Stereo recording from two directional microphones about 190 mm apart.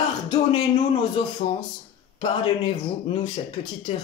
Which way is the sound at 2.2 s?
25° left (ahead or behind).